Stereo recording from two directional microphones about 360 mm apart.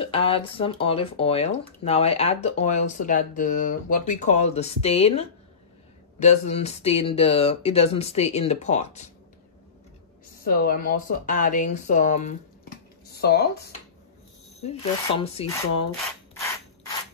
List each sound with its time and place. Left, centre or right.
0.0 s speech: centre
10.4 s speech: left
14.6 s speech: centre
16.3 s mechanisms: centre